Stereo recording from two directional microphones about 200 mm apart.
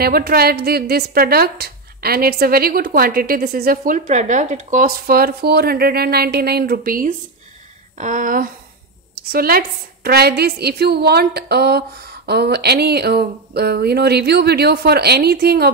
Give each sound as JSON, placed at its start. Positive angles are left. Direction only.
{"t": 0.0, "sound": "a woman's voice", "side_deg": -50}